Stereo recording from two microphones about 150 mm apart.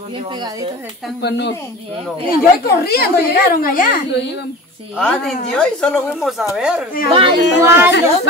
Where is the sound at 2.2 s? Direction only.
90° left.